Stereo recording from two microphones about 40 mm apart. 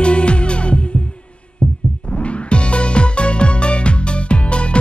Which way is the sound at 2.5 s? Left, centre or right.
Left.